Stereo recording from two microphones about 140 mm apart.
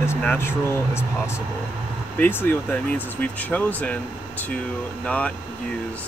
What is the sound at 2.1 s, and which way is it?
Speech, 10° left (ahead or behind).